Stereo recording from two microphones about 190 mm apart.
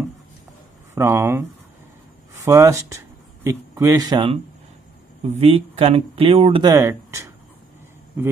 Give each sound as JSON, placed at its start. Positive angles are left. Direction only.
{"t": 0.9, "sound": "speech", "side_deg": -15}
{"t": 6.7, "sound": "speech", "side_deg": -15}